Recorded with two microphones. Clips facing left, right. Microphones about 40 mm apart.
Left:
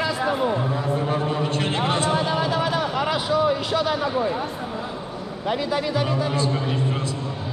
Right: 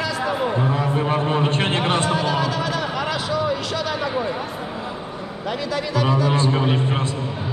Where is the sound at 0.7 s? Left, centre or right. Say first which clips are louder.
Right 3 dB; right.